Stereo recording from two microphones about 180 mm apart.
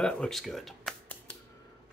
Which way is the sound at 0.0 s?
5° left (ahead or behind).